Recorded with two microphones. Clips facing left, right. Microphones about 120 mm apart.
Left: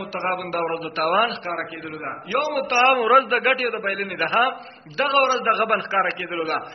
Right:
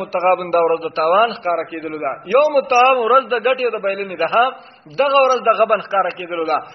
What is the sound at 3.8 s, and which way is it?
Speech, 45° right (ahead or behind).